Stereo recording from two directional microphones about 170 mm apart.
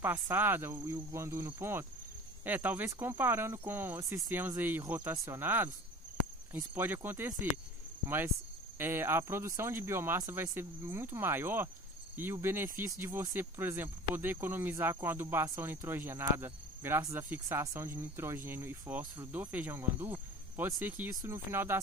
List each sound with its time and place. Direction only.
0.0 s speech: 10° right (ahead or behind)
8.7 s speech: 15° right (ahead or behind)